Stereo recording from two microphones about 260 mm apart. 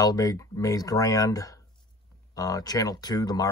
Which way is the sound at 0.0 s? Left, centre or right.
Centre.